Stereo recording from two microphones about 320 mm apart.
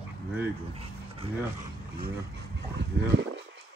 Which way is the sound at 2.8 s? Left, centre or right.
Right.